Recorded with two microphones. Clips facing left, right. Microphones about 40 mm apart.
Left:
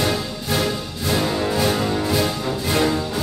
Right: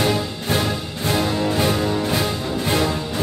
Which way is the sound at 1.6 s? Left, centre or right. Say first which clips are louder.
Even; right.